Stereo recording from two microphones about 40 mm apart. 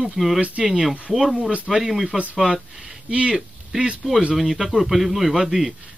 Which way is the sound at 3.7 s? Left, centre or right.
Centre.